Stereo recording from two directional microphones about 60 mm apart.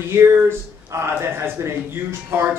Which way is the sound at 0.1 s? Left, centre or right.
Right.